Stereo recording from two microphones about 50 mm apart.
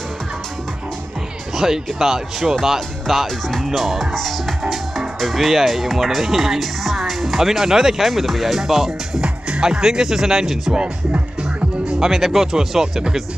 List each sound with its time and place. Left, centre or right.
1.6 s speech: centre
10.7 s speech: centre
12.0 s speech: centre